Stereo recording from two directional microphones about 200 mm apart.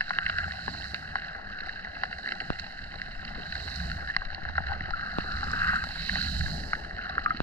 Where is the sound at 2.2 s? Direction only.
10° left (ahead or behind).